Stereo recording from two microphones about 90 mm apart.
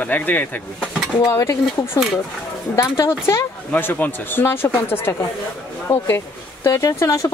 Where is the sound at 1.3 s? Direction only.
30° left (ahead or behind).